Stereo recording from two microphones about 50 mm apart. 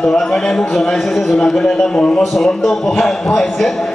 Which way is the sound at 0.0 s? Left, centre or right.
Centre.